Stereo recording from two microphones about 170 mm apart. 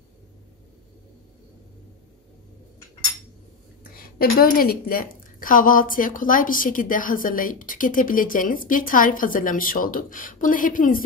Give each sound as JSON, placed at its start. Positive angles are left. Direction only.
{"t": 3.9, "sound": "a woman's voice", "side_deg": 60}